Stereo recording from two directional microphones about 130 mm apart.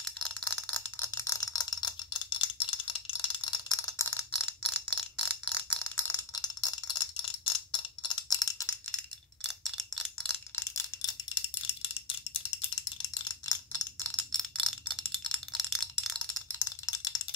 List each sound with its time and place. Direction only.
0.0 s rattle: 5° left (ahead or behind); by 4.1 s 30° left (ahead or behind)
4.1 s bell: 5° left (ahead or behind)
6.3 s a sound: 30° left (ahead or behind)
9.8 s wind chime: centre (ahead or behind)
10.5 s wind chime: 20° left (ahead or behind)
13.1 s a sound: 30° left (ahead or behind)
13.9 s chime: 10° left (ahead or behind)